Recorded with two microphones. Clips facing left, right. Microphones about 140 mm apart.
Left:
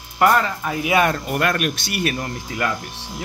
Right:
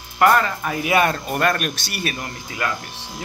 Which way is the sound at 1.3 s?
25° right (ahead or behind).